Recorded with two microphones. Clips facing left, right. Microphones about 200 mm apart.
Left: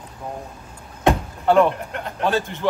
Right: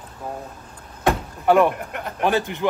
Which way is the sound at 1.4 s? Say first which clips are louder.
Even; 15° right (ahead or behind).